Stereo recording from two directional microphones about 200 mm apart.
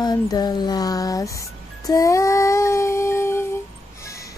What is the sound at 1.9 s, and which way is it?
Music, 15° left (ahead or behind).